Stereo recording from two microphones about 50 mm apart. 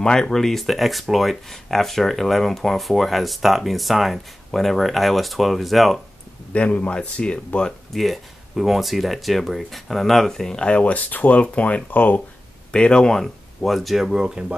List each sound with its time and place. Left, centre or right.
0.0 s speech: centre
6.5 s speech: left
7.9 s speech: centre; by 12.2 s left
12.7 s speech: centre